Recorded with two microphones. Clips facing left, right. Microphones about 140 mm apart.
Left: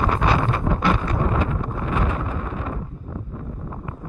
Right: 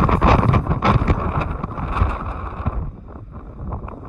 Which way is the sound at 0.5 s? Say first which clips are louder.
Right 3 dB; 75° right (ahead or behind).